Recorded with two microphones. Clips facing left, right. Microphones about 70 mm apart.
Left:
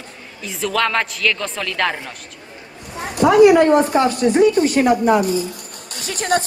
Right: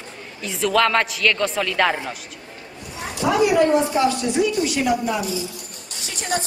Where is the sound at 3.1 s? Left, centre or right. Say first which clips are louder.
Left 7 dB; left.